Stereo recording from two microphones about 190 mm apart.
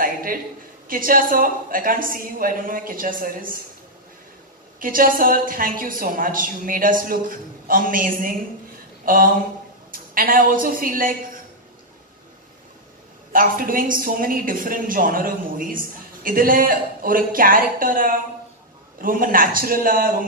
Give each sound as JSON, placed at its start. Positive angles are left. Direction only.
{"t": 0.0, "sound": "a sound", "side_deg": -50}
{"t": 0.8, "sound": "a woman's voice", "side_deg": -45}
{"t": 4.7, "sound": "a woman's voice", "side_deg": -45}
{"t": 13.3, "sound": "a woman's voice", "side_deg": -45}